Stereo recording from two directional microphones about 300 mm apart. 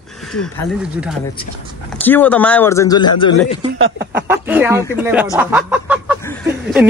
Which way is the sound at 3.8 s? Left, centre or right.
Right.